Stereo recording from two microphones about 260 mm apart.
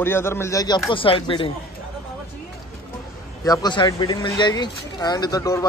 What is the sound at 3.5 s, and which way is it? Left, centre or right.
A man's voice, centre.